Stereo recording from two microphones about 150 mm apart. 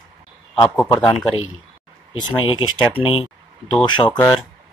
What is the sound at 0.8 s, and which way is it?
Speech, 30° left (ahead or behind).